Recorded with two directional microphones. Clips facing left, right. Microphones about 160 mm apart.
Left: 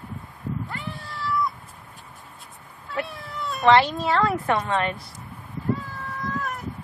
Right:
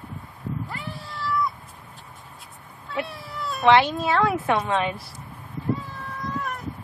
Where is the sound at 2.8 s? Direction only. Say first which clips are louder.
Even; centre (ahead or behind).